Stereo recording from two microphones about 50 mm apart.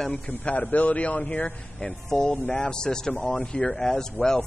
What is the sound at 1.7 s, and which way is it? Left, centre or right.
Speech, centre.